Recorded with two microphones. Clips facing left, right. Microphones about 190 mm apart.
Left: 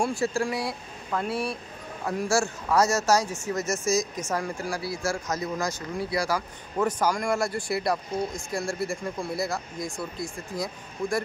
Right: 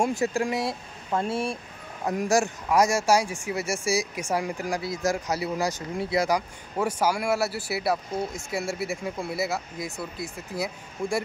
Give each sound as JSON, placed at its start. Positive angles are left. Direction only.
{"t": 0.0, "sound": "speech", "side_deg": -20}
{"t": 5.9, "sound": "speech", "side_deg": -20}